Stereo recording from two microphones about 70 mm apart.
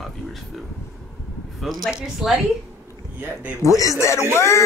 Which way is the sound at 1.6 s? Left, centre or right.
Centre.